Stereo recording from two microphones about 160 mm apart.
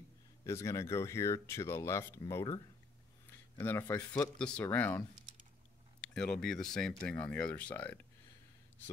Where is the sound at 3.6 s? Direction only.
10° left (ahead or behind).